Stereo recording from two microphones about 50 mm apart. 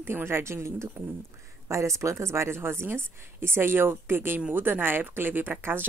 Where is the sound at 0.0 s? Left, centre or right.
Right.